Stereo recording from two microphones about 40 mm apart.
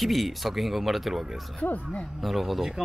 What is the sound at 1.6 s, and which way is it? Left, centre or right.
Speech, left.